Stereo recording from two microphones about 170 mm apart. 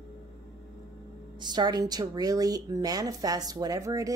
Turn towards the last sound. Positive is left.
turn(degrees=-20)  # may be behind; listen again after turning